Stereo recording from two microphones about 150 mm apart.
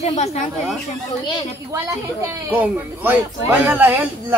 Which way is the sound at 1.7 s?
20° right (ahead or behind).